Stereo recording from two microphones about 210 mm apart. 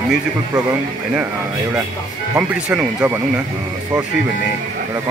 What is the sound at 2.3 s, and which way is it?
Speech, 5° right (ahead or behind).